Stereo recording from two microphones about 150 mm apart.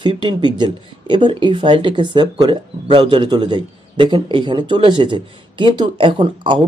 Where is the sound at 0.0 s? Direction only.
30° right (ahead or behind).